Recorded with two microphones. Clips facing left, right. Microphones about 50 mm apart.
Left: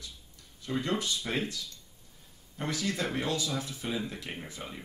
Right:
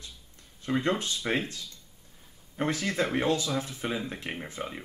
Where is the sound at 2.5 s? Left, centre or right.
Right.